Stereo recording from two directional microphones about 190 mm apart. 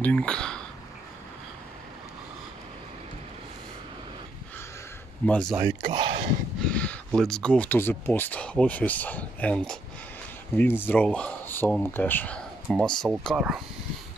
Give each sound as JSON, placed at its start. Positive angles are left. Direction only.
{"t": 0.0, "sound": "speech", "side_deg": 5}
{"t": 5.2, "sound": "speech", "side_deg": 5}
{"t": 5.6, "sound": "speech", "side_deg": -20}
{"t": 6.6, "sound": "speech", "side_deg": 5}